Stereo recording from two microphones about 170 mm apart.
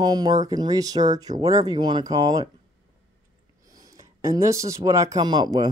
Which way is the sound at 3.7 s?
20° right (ahead or behind).